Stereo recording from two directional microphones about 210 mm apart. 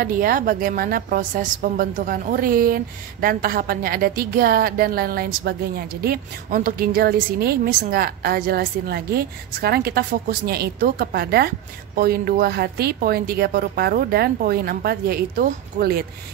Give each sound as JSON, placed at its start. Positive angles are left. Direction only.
{"t": 0.0, "sound": "a woman's voice", "side_deg": -45}